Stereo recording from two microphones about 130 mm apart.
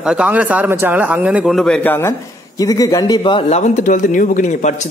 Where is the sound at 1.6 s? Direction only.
5° left (ahead or behind).